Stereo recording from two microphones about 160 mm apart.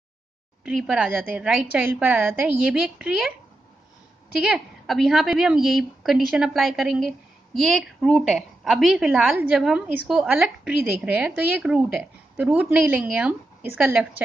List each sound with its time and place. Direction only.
0.7 s a woman's voice: 5° right (ahead or behind)
4.4 s a woman's voice: centre (ahead or behind)